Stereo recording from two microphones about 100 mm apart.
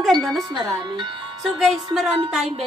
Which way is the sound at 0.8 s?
50° right (ahead or behind).